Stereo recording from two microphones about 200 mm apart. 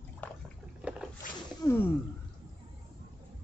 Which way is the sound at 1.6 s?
20° left (ahead or behind).